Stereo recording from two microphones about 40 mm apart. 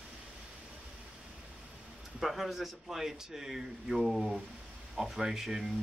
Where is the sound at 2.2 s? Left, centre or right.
Centre.